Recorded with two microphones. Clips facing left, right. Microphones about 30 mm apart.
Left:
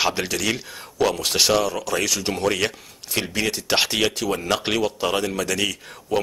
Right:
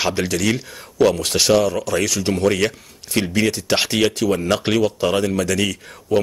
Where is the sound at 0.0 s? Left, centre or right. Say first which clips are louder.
Right 3 dB; centre.